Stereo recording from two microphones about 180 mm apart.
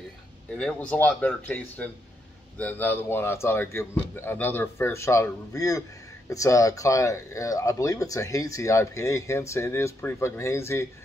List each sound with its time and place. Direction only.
0.6 s speech: 5° left (ahead or behind)